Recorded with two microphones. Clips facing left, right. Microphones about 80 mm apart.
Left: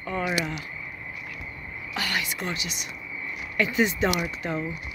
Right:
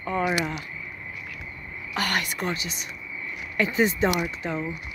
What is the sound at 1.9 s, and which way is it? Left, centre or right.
Speech, right.